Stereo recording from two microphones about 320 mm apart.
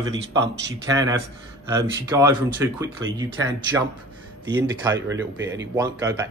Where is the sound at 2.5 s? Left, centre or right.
Centre.